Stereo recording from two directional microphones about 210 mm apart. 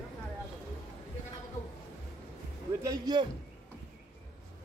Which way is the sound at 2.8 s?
20° right (ahead or behind).